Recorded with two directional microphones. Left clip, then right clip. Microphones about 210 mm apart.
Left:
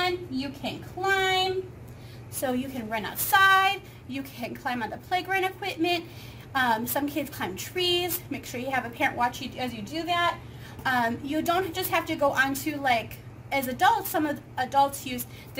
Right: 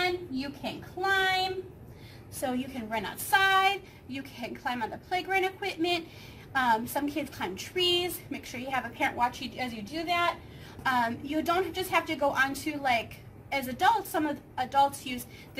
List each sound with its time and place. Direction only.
0.0 s a woman's voice: 10° left (ahead or behind)